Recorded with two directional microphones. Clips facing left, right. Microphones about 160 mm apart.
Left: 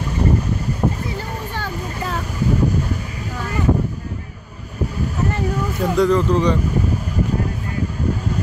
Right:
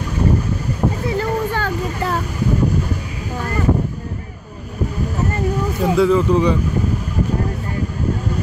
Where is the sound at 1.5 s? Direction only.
65° right (ahead or behind).